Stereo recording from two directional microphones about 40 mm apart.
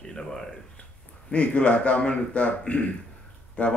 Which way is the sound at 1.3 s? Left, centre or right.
Left.